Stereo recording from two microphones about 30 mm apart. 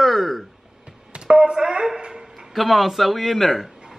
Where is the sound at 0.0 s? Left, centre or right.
Centre.